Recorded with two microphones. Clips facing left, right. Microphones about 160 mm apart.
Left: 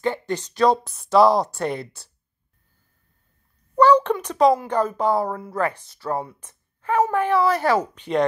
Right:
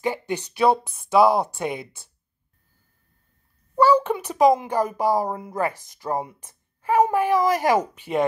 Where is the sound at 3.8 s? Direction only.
5° right (ahead or behind).